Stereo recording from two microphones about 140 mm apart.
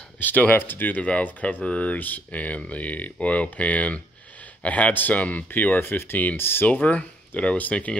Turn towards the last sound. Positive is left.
turn(degrees=10)  # may be behind; listen again after turning